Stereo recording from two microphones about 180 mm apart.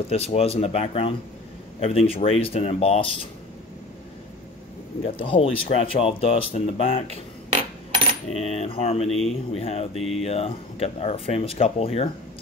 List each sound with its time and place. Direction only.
0.1 s speech: 35° left (ahead or behind)
5.0 s speech: 30° left (ahead or behind)
8.4 s speech: 35° left (ahead or behind)
9.9 s speech: centre (ahead or behind)
10.2 s speech: 35° left (ahead or behind)